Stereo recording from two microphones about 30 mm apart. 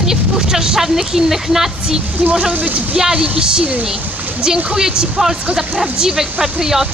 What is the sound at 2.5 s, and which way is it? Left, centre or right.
Speech, right.